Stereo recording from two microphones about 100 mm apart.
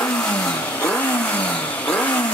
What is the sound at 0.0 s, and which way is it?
Vehicle, 15° left (ahead or behind).